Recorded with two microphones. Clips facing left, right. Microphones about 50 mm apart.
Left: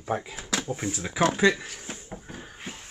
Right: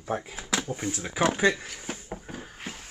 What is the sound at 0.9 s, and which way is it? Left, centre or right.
Speech, centre.